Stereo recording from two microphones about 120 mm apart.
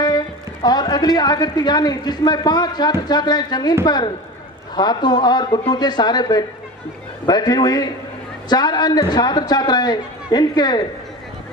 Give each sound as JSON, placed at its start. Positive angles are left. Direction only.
{"t": 0.7, "sound": "a man's voice", "side_deg": 35}